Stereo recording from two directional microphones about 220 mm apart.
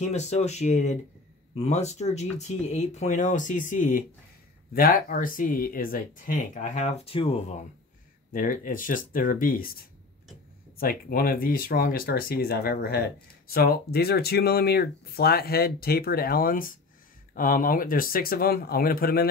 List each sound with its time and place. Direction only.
0.1 s speech: 30° left (ahead or behind)
8.3 s speech: 40° left (ahead or behind)